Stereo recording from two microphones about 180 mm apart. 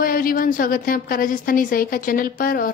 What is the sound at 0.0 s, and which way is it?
A woman's voice, 50° left (ahead or behind).